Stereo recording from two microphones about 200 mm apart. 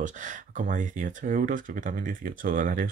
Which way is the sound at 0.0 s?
40° right (ahead or behind).